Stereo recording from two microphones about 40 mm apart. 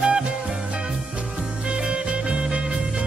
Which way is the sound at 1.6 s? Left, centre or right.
Centre.